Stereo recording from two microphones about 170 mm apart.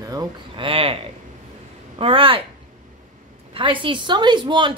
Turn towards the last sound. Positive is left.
turn(degrees=-30)  # may be behind; listen again after turning